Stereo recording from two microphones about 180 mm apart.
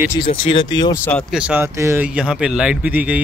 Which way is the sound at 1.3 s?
10° right (ahead or behind).